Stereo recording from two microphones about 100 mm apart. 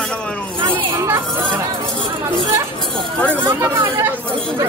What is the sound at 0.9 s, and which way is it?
Chatter, 30° right (ahead or behind).